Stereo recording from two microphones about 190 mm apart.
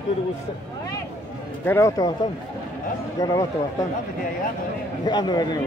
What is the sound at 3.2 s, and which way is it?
Speech, 20° left (ahead or behind).